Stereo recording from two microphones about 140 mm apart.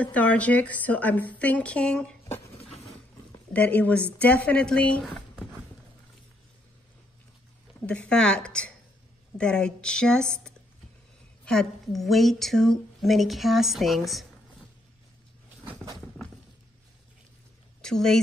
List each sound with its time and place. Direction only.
0.0 s a woman's voice: 10° left (ahead or behind)
2.2 s a sound: 20° left (ahead or behind)
3.5 s a woman's voice: 10° left (ahead or behind)
7.8 s a woman's voice: 10° left (ahead or behind)
17.8 s speech: 5° left (ahead or behind)